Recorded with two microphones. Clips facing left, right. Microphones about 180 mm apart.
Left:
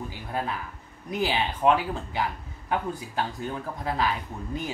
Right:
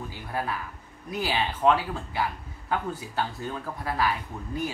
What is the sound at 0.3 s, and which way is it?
Speech, 20° left (ahead or behind).